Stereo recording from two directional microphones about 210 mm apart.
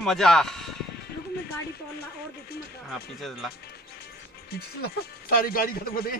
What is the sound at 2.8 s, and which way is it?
Speech, centre (ahead or behind).